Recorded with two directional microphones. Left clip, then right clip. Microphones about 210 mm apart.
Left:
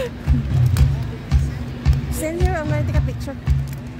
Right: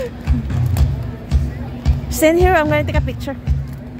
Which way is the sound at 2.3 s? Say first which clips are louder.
Right 12 dB; 30° right (ahead or behind).